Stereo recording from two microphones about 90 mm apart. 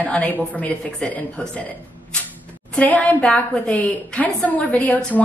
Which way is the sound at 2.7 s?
15° left (ahead or behind).